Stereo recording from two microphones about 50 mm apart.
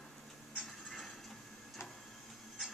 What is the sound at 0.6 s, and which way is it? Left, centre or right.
Mechanisms, centre.